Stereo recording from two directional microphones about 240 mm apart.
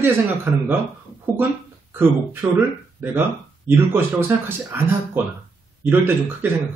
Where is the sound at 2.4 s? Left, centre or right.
Centre.